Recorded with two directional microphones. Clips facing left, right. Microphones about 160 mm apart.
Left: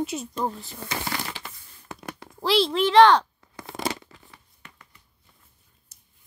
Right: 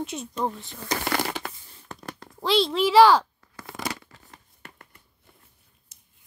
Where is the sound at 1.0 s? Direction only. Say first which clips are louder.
Right 5 dB; 60° right (ahead or behind).